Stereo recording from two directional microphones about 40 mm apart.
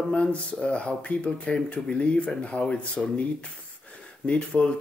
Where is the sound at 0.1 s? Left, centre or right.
Left.